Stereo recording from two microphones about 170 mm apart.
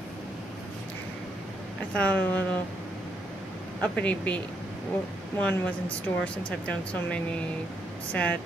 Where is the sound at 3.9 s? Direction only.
10° left (ahead or behind).